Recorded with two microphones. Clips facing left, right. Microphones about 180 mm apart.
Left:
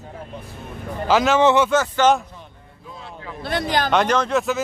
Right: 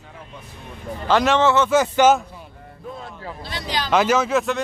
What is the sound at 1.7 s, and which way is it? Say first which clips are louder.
Speech: right 2 dB; 10° right (ahead or behind).